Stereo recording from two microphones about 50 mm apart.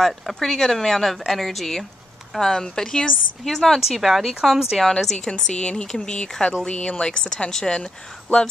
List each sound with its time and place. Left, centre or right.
0.0 s a woman's voice: centre
3.8 s speech: centre
5.1 s a woman's voice: centre